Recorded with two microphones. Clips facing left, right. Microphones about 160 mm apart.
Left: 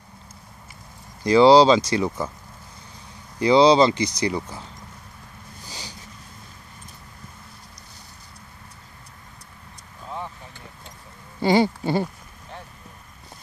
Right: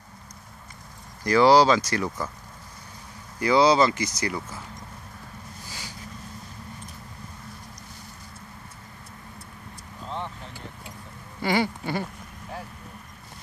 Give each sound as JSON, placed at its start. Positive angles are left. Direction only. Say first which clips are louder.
{"t": 1.2, "sound": "speech", "louder": "left 4 dB", "side_deg": 25}
{"t": 3.3, "sound": "speech", "louder": "left 4 dB", "side_deg": 25}
{"t": 10.0, "sound": "vehicle", "louder": "even", "side_deg": 10}
{"t": 11.4, "sound": "speech", "louder": "left 6 dB", "side_deg": 30}